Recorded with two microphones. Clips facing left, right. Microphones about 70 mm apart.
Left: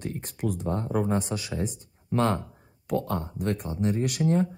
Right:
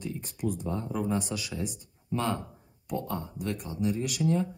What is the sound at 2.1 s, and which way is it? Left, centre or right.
Speech, left.